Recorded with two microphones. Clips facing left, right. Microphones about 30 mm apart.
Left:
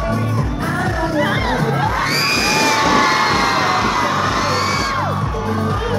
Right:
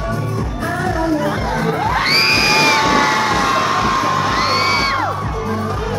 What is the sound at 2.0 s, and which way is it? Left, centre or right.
Music, right.